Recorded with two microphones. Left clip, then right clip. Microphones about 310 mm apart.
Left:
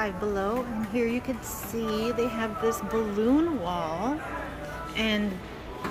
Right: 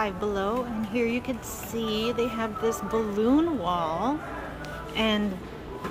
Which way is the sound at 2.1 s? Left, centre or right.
Centre.